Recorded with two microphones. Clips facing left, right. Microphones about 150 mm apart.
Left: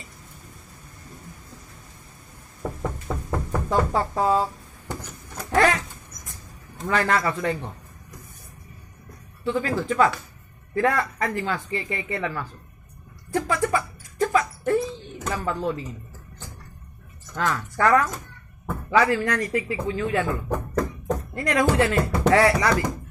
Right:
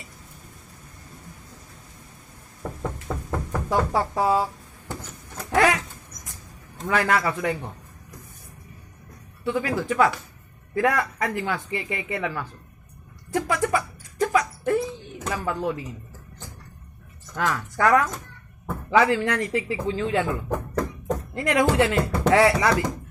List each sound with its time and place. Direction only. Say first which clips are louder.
2.8 s knock: right 1 dB; 5° left (ahead or behind)
3.6 s speech: even; 15° right (ahead or behind)
5.4 s a sound: even; 5° right (ahead or behind)
6.9 s speech: even; 5° right (ahead or behind)
9.4 s speech: even; 10° right (ahead or behind)
13.5 s a sound: even; 15° right (ahead or behind)
14.7 s a sound: left 1 dB; 5° right (ahead or behind)
17.4 s speech: even; 5° right (ahead or behind)
17.7 s speech: even; 15° right (ahead or behind)
20.5 s music: left 1 dB; 5° right (ahead or behind)
21.4 s speech: right 1 dB; 20° right (ahead or behind)